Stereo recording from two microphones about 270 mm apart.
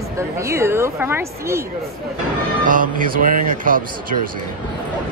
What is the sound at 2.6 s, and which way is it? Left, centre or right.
Speech, right.